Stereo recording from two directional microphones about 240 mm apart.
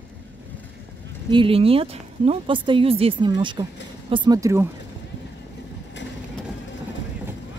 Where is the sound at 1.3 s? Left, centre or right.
Right.